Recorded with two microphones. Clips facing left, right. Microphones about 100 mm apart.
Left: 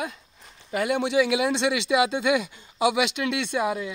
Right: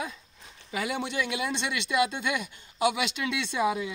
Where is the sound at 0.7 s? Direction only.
55° left (ahead or behind).